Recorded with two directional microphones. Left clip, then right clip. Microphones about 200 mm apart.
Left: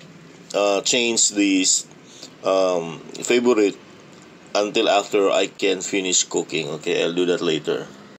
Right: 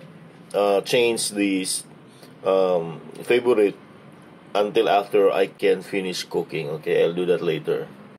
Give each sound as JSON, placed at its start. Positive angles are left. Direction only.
{"t": 0.5, "sound": "speech", "side_deg": 30}